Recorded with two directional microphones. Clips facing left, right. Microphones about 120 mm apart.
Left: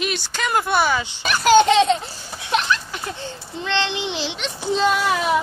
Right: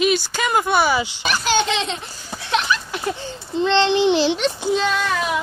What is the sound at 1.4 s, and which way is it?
Speech, 45° left (ahead or behind).